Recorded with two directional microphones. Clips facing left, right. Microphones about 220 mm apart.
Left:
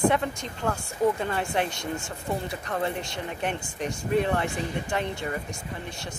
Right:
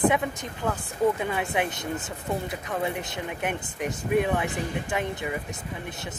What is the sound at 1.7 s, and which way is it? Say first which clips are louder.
Speech: right 1 dB; 20° right (ahead or behind).